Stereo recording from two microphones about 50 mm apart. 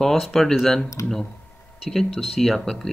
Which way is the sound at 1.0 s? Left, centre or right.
Left.